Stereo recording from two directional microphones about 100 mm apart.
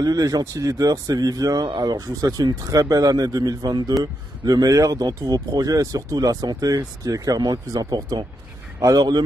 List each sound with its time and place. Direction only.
0.0 s speech: 35° right (ahead or behind)